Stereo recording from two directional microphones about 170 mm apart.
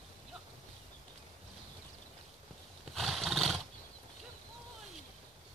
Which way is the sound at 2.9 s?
Centre (ahead or behind).